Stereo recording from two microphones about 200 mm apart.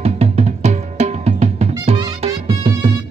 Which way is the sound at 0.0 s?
35° right (ahead or behind).